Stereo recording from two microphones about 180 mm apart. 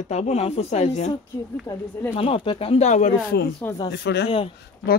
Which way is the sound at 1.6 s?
15° left (ahead or behind).